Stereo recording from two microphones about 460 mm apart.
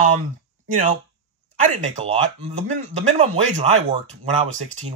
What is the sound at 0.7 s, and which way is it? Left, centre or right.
Speech, centre.